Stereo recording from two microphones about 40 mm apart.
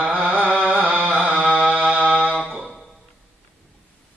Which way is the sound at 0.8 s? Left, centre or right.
Right.